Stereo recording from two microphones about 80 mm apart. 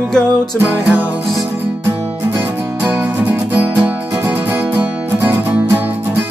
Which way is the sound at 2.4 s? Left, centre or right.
Right.